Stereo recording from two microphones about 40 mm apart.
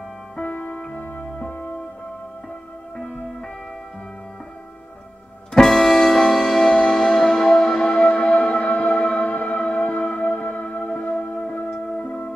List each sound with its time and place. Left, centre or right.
0.4 s music: left
5.5 s music: centre; by 11.4 s left
11.7 s music: centre